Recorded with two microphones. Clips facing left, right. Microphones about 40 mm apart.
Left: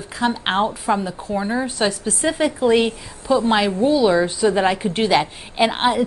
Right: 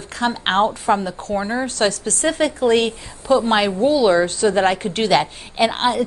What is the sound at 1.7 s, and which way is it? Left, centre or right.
Speech, centre.